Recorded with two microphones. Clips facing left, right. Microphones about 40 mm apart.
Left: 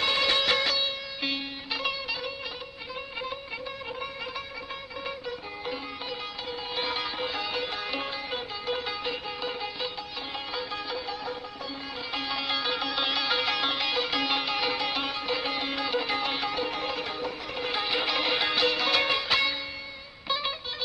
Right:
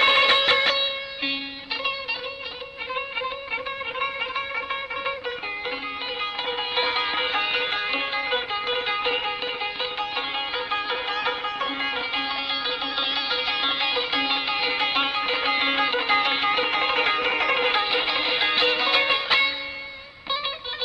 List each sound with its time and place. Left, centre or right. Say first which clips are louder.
0.0 s music: right 7 dB; right
6.7 s sitar: right 6 dB; right
11.1 s music: right 10 dB; right
12.1 s music: right 5 dB; right
12.4 s music: right 2 dB; centre
13.6 s music: right 3 dB; right
17.8 s music: right 3 dB; right